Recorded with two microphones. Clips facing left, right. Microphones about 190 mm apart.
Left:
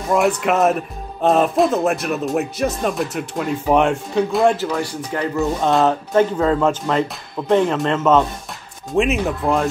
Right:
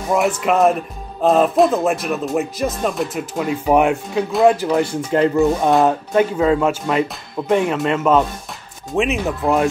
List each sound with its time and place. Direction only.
0.1 s speech: centre (ahead or behind)
4.6 s speech: 20° right (ahead or behind)